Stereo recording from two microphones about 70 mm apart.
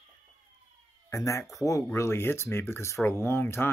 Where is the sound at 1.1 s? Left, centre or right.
Left.